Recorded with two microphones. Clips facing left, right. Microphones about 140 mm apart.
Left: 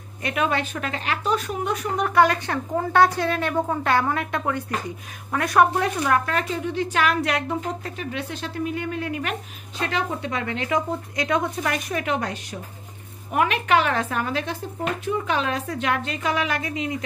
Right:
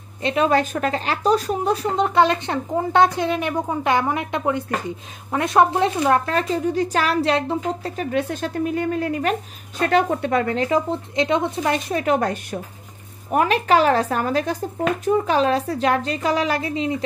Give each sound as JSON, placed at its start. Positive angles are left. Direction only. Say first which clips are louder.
{"t": 0.2, "sound": "a woman's voice", "louder": "right 5 dB", "side_deg": -25}
{"t": 0.5, "sound": "a woman's voice", "louder": "right 7 dB", "side_deg": -40}
{"t": 12.1, "sound": "a woman's voice", "louder": "right 9 dB", "side_deg": -50}
{"t": 13.3, "sound": "speech", "louder": "right 3 dB", "side_deg": -35}